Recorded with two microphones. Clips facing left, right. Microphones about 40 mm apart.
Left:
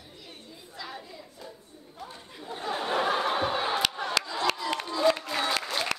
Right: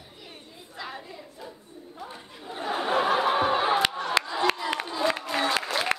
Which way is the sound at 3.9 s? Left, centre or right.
Centre.